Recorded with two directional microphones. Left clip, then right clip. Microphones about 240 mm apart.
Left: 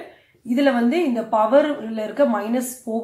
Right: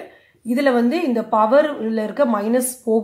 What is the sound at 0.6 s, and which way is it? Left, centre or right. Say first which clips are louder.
Speech: right 1 dB; right.